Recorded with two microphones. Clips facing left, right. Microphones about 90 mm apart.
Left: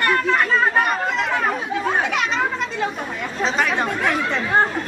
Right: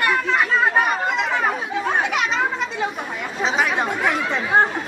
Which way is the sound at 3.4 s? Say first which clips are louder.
Even; 5° right (ahead or behind).